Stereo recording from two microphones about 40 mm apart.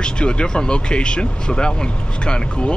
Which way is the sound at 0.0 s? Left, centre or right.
Left.